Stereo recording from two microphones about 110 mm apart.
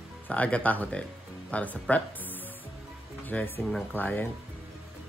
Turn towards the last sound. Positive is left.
turn(degrees=15)  # may be behind; listen again after turning